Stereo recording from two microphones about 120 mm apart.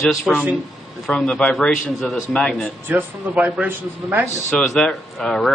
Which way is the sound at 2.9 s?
10° right (ahead or behind).